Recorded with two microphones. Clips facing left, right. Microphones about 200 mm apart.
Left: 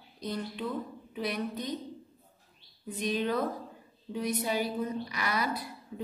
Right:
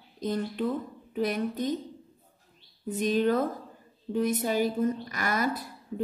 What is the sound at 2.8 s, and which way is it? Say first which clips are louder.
A woman's voice: right 6 dB; 45° right (ahead or behind).